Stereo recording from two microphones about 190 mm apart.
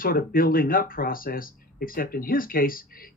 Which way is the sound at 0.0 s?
50° left (ahead or behind).